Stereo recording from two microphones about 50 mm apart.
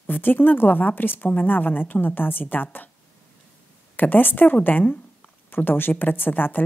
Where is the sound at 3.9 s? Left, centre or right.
Left.